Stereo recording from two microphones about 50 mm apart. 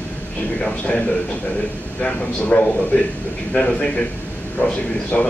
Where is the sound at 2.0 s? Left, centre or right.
Left.